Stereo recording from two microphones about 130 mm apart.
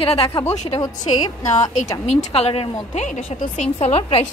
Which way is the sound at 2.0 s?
50° left (ahead or behind).